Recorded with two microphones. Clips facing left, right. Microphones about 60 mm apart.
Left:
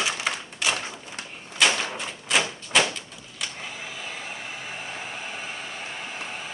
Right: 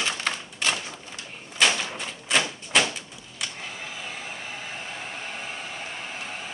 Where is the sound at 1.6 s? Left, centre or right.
Centre.